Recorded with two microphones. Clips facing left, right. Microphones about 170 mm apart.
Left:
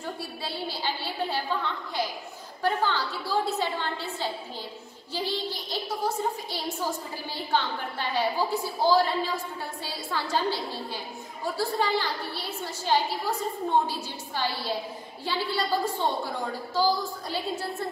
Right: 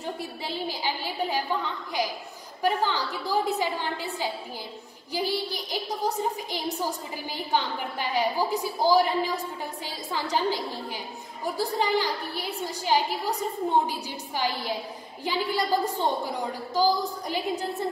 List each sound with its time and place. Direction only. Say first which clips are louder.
0.0 s a woman's voice: right 2 dB; 20° right (ahead or behind)